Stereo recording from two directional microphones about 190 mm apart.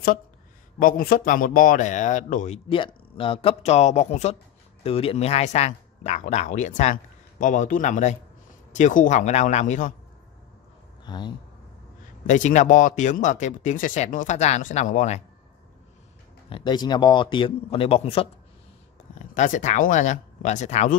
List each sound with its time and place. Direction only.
0.7 s speech: 50° left (ahead or behind)
11.1 s a man's voice: 25° left (ahead or behind)
12.3 s speech: 40° left (ahead or behind)
16.4 s a man's voice: 25° left (ahead or behind)
19.1 s speech: 40° left (ahead or behind)